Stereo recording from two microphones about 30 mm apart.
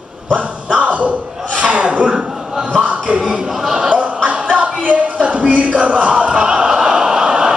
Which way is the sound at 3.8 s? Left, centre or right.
Right.